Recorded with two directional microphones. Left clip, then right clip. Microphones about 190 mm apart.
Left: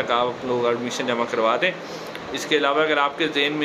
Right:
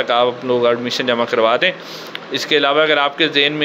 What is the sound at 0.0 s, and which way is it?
Speech, 20° right (ahead or behind).